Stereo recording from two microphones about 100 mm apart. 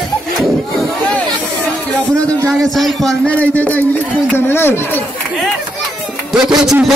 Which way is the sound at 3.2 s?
15° left (ahead or behind).